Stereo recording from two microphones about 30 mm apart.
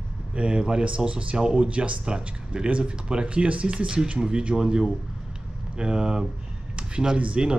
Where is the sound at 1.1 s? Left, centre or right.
Right.